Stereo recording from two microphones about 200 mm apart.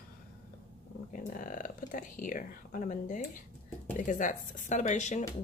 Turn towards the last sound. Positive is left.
turn(degrees=35)  # may be behind; listen again after turning